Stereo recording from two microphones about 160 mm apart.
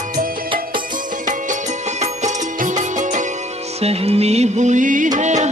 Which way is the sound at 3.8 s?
40° right (ahead or behind).